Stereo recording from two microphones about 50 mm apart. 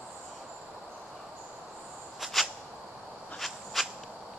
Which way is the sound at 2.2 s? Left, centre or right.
Centre.